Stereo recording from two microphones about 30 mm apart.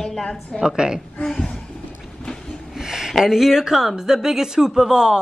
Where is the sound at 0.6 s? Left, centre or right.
Right.